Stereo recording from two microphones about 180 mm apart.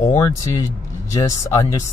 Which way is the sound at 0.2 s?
20° left (ahead or behind).